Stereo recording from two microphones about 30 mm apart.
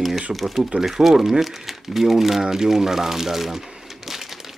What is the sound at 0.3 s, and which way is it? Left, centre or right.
Speech, centre.